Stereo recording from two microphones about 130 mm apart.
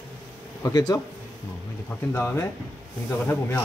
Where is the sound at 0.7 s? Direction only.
30° left (ahead or behind).